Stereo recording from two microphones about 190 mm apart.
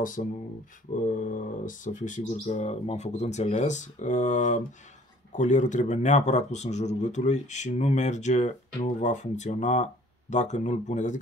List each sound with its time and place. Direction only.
0.0 s speech: 45° left (ahead or behind)